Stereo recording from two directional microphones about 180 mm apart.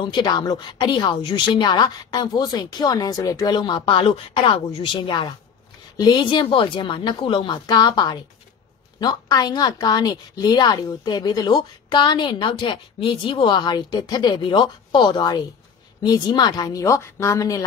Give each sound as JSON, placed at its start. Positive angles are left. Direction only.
{"t": 0.0, "sound": "a woman's voice", "side_deg": 25}